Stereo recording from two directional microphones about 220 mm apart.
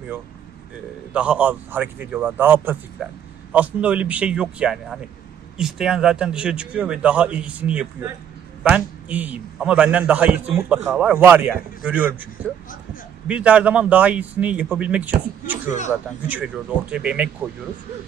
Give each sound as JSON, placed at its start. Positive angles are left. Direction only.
{"t": 1.1, "sound": "a man's voice", "side_deg": -5}
{"t": 16.9, "sound": "speech", "side_deg": -5}